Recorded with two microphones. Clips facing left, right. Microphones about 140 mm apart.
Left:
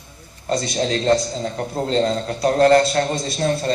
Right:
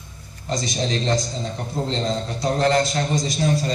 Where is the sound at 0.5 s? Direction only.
60° left (ahead or behind).